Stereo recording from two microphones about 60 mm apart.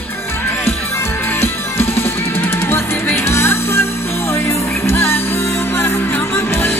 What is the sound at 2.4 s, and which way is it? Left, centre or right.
Music, left.